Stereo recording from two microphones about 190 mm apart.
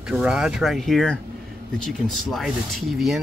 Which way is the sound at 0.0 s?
5° right (ahead or behind).